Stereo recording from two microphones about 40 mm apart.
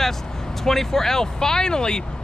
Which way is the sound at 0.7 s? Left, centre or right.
Centre.